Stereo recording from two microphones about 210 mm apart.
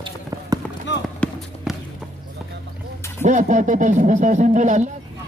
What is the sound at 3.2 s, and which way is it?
Speech, 35° right (ahead or behind).